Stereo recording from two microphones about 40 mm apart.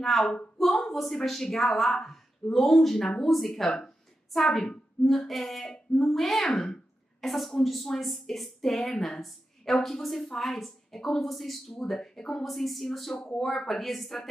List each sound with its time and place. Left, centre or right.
0.0 s a woman's voice: centre
5.7 s speech: centre
6.1 s a child's voice: centre
12.4 s a woman's voice: centre